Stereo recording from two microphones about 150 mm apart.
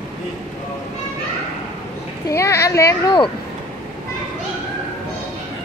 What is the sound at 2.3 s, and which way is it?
Speech, 20° left (ahead or behind).